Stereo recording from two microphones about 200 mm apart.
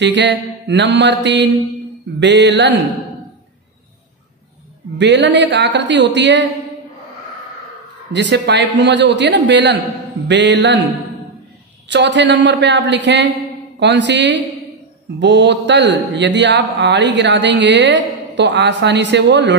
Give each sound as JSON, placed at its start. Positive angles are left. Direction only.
{"t": 0.0, "sound": "a man's voice", "side_deg": -60}
{"t": 4.9, "sound": "a man's voice", "side_deg": -65}
{"t": 8.1, "sound": "a man's voice", "side_deg": -60}
{"t": 11.9, "sound": "a man's voice", "side_deg": -60}